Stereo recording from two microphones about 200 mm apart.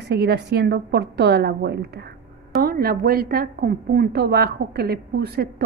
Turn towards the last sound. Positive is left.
turn(degrees=-55)  # may be behind; listen again after turning